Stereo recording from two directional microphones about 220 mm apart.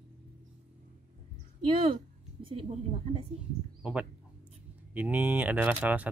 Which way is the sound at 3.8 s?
5° right (ahead or behind).